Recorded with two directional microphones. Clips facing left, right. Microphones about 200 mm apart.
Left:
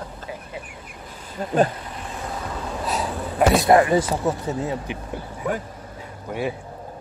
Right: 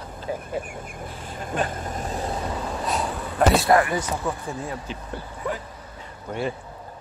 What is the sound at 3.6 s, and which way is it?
Speech, 25° left (ahead or behind).